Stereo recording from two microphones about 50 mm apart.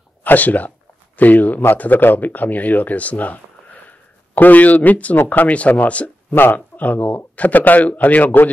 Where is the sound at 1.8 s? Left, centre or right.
Left.